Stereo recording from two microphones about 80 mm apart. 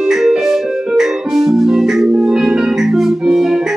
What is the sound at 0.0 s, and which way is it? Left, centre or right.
Keyboard, centre.